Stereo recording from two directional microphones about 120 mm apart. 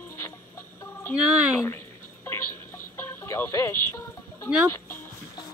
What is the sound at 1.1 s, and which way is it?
Speech, 5° right (ahead or behind).